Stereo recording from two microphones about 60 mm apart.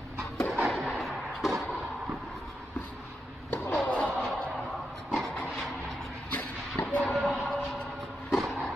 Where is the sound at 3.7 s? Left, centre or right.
Left.